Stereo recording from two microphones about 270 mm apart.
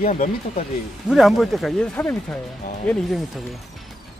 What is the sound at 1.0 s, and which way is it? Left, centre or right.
Speech, centre.